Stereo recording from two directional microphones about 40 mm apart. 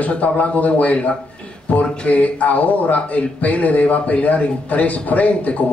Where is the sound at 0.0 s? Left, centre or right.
Left.